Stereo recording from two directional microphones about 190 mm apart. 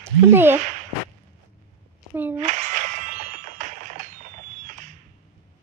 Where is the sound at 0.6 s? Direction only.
40° right (ahead or behind).